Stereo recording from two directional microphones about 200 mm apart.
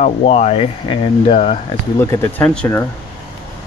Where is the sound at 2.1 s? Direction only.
10° left (ahead or behind).